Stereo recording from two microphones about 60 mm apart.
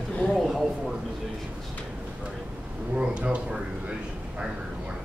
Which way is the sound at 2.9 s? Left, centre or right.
Centre.